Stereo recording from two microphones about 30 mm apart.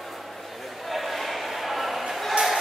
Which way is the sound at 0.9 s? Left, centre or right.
Centre.